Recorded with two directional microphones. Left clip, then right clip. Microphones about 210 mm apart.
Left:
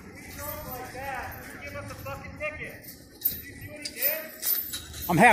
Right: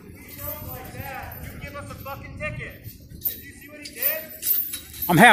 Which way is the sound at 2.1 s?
50° right (ahead or behind).